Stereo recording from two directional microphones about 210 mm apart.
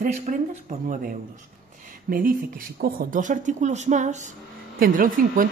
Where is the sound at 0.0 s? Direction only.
35° right (ahead or behind).